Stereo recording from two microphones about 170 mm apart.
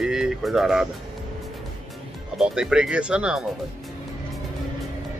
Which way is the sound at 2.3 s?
5° right (ahead or behind).